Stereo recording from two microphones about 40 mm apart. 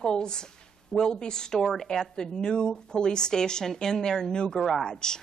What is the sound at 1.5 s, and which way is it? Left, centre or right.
Speech, centre.